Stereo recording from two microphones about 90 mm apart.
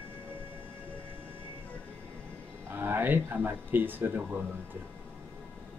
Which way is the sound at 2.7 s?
25° right (ahead or behind).